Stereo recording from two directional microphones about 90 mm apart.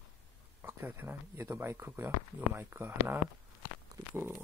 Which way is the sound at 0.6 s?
25° right (ahead or behind).